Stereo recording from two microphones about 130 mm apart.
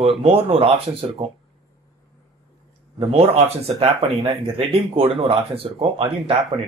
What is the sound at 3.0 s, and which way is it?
Speech, 45° right (ahead or behind).